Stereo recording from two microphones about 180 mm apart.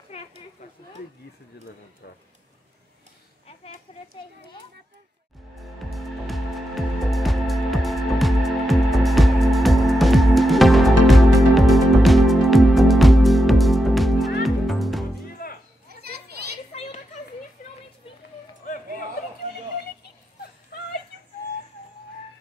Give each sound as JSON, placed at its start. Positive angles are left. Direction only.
{"t": 0.1, "sound": "a sound", "side_deg": 35}
{"t": 5.6, "sound": "music", "side_deg": 0}
{"t": 15.4, "sound": "music", "side_deg": 55}
{"t": 16.0, "sound": "children playing", "side_deg": -60}
{"t": 16.7, "sound": "children playing", "side_deg": 35}
{"t": 17.6, "sound": "a sound", "side_deg": 50}